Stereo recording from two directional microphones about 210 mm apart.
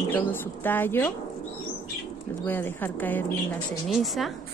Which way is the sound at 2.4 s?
10° left (ahead or behind).